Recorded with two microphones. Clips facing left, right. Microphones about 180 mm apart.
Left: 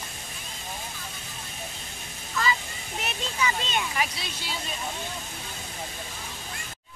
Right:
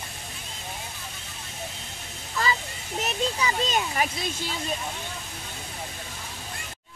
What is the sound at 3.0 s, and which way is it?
Speech, 40° right (ahead or behind).